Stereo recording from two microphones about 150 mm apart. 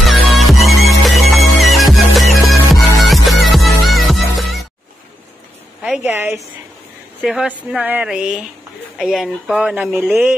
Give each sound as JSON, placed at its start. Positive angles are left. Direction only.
{"t": 0.0, "sound": "music", "side_deg": 0}
{"t": 5.8, "sound": "a sound", "side_deg": -10}
{"t": 7.2, "sound": "speech", "side_deg": -5}